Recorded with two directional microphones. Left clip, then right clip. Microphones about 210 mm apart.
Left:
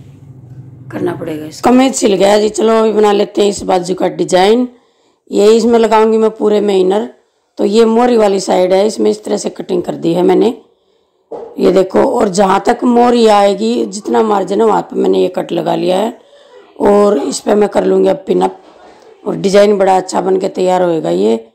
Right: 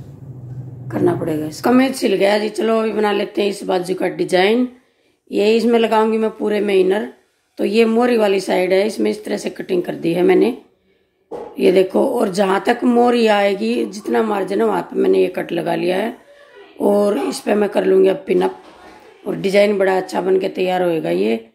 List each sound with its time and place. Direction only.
0.8 s speech: 5° right (ahead or behind)
1.6 s speech: 35° left (ahead or behind)
11.5 s speech: 25° left (ahead or behind)